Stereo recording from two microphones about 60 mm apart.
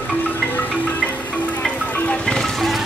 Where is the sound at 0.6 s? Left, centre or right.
Left; by 2.7 s centre.